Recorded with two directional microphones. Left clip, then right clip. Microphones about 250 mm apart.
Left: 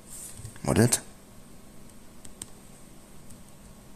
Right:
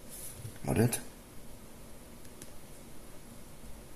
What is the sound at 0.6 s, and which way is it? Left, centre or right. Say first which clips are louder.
Speech: left 7 dB; left.